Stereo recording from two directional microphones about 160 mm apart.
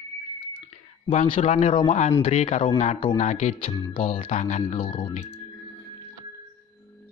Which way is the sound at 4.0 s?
35° left (ahead or behind).